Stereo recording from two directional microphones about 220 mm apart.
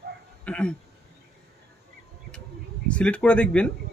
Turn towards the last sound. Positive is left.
turn(degrees=5)  # may be behind; listen again after turning